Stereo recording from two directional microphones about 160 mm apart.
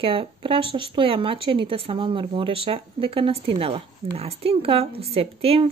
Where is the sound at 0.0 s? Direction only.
35° right (ahead or behind).